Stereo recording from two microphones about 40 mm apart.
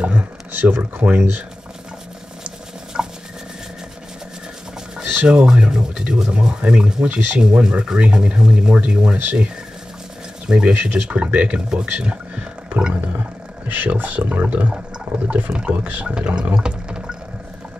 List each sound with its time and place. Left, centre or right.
0.0 s speech: right
2.4 s patter: centre
5.0 s speech: right
10.5 s speech: right
13.8 s speech: right
14.7 s a sound: right
15.6 s speech: right
16.2 s wild animals: right